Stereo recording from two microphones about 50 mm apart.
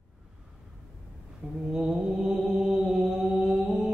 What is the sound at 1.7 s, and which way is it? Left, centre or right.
Mantra, centre.